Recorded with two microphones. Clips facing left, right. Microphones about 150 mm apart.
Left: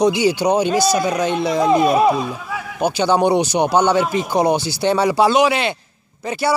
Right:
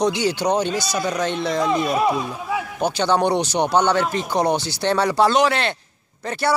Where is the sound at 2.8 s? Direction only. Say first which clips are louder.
Left 4 dB; 10° left (ahead or behind).